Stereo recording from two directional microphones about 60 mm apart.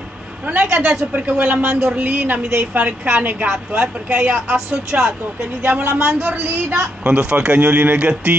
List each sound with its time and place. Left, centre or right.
0.5 s a man's voice: right
5.6 s a man's voice: right